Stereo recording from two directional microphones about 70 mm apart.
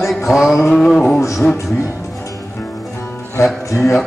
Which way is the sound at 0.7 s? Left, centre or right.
Centre.